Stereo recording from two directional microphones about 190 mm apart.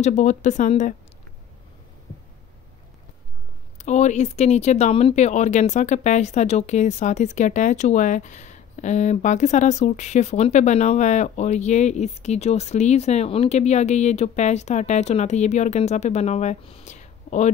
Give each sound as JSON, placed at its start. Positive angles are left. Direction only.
{"t": 0.0, "sound": "speech", "side_deg": 40}
{"t": 3.7, "sound": "speech", "side_deg": 40}